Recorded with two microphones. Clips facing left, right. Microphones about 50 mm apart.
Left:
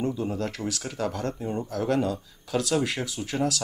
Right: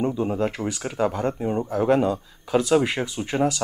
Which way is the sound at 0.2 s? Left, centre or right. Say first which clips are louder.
Right 5 dB; right.